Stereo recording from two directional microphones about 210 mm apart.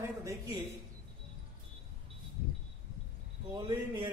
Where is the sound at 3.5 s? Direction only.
20° right (ahead or behind).